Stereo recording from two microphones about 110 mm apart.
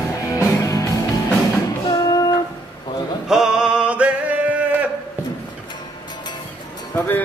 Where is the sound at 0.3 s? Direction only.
30° left (ahead or behind).